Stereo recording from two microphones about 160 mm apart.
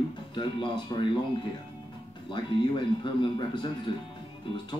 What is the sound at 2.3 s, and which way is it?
Speech, 30° left (ahead or behind).